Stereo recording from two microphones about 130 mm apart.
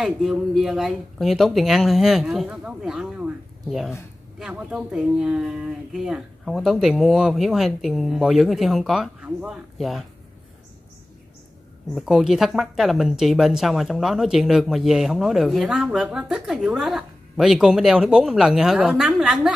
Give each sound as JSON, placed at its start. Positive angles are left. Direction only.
{"t": 0.0, "sound": "speech", "side_deg": 0}
{"t": 11.9, "sound": "speech", "side_deg": 0}